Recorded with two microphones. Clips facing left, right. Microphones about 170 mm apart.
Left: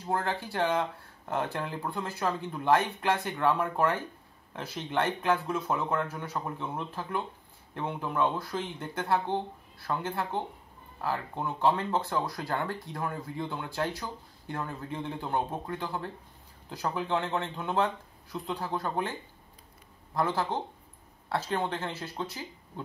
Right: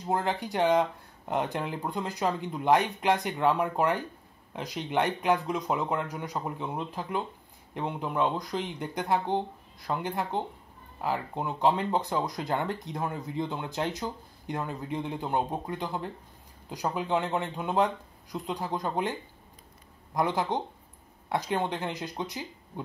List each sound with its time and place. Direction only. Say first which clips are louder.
0.0 s speech: right 2 dB; 20° right (ahead or behind)
20.2 s speech: right 2 dB; 15° right (ahead or behind)